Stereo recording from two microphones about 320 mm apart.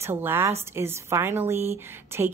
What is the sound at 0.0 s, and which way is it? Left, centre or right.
Speech, centre.